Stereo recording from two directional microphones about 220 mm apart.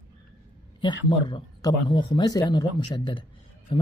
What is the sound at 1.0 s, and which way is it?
Speech, 20° left (ahead or behind).